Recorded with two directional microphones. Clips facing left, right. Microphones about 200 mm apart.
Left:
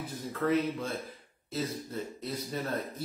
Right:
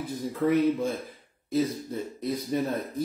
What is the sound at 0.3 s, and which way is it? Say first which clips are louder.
Speech: right 5 dB; 15° right (ahead or behind).